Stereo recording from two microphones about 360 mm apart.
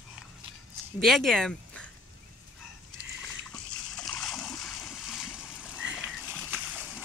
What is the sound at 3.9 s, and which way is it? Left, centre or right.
Splash, centre.